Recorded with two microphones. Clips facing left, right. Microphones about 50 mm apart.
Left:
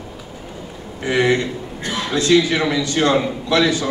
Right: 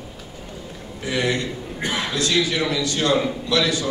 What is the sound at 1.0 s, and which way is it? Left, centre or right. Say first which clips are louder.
Speech: left 6 dB; left.